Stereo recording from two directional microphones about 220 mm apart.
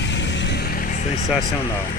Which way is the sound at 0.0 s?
55° left (ahead or behind).